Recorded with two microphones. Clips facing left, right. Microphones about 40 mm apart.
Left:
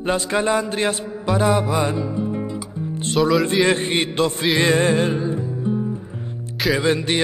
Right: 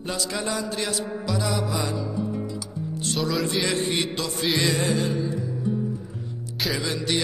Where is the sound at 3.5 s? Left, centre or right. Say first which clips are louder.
Left 6 dB; left.